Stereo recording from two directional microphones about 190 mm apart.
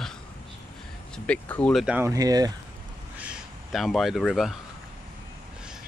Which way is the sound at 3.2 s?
5° right (ahead or behind).